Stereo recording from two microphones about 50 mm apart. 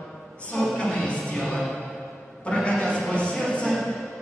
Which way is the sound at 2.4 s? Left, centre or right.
Left.